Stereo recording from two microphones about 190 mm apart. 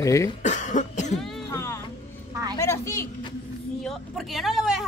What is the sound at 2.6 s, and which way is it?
Speech, 15° left (ahead or behind).